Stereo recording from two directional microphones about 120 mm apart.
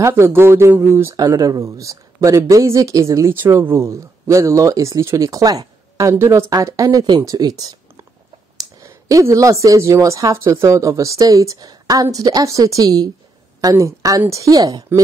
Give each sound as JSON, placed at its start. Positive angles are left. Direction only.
{"t": 0.0, "sound": "speech", "side_deg": -20}
{"t": 1.1, "sound": "speech", "side_deg": -30}
{"t": 8.8, "sound": "a woman's voice", "side_deg": -25}